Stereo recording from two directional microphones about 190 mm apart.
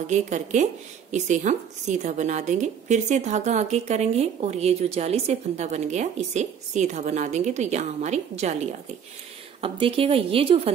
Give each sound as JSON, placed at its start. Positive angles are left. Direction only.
{"t": 0.0, "sound": "a woman's voice", "side_deg": -40}
{"t": 9.6, "sound": "a woman's voice", "side_deg": -30}